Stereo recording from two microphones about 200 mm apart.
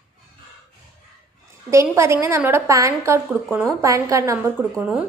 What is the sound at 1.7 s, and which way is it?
A woman's voice, 15° right (ahead or behind).